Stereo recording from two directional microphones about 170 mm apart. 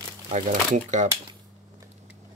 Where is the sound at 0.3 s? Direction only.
45° right (ahead or behind).